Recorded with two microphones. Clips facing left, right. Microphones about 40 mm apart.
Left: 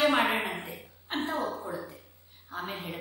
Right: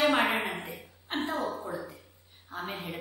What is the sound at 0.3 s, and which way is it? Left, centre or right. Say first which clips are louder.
Speech: even; left.